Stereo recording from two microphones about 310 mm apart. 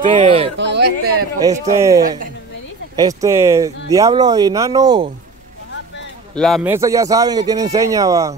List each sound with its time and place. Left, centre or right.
0.0 s speech: centre
0.6 s speech: right
1.7 s speech: centre
6.3 s speech: centre